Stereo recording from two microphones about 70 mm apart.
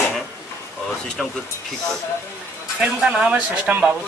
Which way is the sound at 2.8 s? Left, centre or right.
Centre.